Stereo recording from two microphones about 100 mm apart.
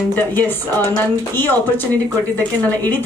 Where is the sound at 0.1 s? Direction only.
20° left (ahead or behind).